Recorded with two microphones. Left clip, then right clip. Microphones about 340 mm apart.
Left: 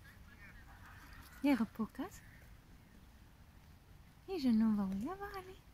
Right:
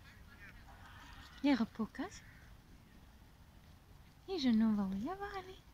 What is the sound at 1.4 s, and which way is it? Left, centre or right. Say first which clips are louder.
Speech: even; centre.